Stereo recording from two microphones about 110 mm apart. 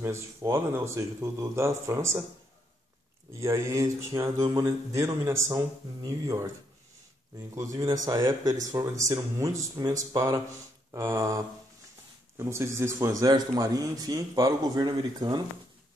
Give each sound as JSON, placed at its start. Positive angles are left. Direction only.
{"t": 0.0, "sound": "speech", "side_deg": -25}
{"t": 3.3, "sound": "a man's voice", "side_deg": -25}
{"t": 7.5, "sound": "a man's voice", "side_deg": -30}